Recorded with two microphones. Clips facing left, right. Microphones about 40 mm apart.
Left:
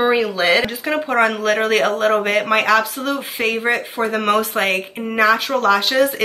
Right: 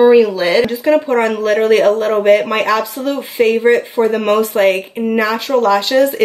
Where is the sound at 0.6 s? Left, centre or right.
Centre.